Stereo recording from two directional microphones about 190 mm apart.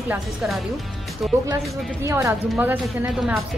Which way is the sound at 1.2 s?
Centre (ahead or behind).